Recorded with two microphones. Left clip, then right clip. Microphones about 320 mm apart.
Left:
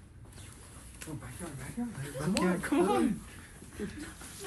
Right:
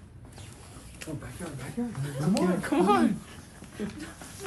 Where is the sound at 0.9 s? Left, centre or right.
Centre.